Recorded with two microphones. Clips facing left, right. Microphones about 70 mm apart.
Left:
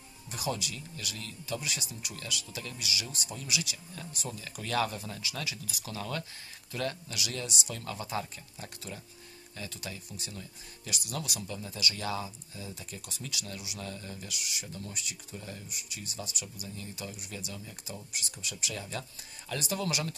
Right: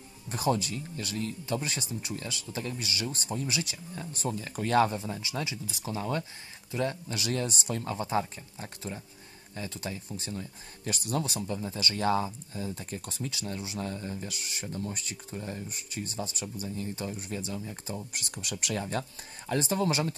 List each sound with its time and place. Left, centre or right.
0.3 s speech: right
7.2 s speech: right
18.3 s speech: right
18.8 s speech: right